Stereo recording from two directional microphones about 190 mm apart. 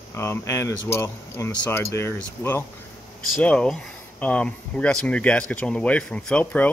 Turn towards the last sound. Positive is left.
turn(degrees=5)  # may be behind; listen again after turning